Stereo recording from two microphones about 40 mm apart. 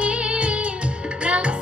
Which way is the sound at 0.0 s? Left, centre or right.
Right.